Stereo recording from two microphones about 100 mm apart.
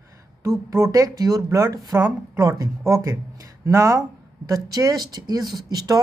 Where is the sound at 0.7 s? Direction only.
30° right (ahead or behind).